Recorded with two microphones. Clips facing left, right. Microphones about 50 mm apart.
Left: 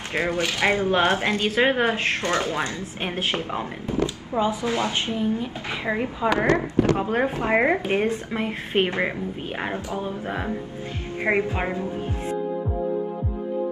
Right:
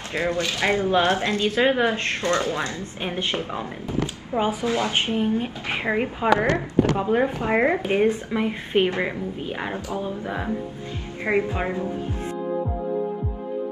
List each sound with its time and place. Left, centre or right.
0.1 s speech: left
0.9 s a woman's voice: centre
4.4 s speech: right
4.6 s speech: left
4.9 s speech: right
5.9 s a woman's voice: right
6.4 s speech: left
7.0 s a woman's voice: centre
7.4 s speech: left
7.8 s a woman's voice: centre
8.7 s a woman's voice: centre
11.2 s speech: left